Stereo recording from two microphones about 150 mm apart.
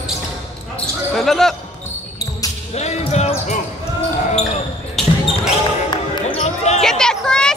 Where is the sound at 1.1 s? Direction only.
Centre (ahead or behind).